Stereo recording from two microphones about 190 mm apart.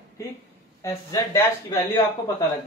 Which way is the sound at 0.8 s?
15° left (ahead or behind).